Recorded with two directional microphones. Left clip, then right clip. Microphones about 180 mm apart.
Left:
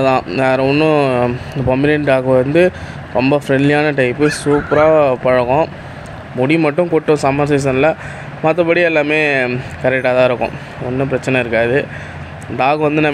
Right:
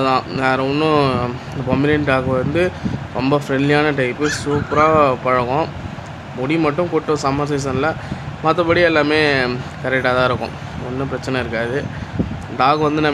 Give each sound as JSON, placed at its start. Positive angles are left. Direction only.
{"t": 0.0, "sound": "speech", "side_deg": 20}